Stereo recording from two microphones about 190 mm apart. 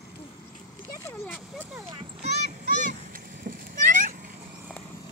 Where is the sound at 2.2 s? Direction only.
40° right (ahead or behind).